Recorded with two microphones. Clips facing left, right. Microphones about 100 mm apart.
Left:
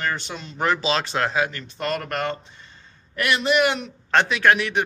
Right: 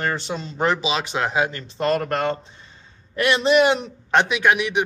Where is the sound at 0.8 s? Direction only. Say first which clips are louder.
Even; 10° right (ahead or behind).